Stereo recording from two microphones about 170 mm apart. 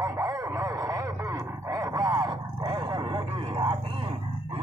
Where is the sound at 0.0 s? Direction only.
20° right (ahead or behind).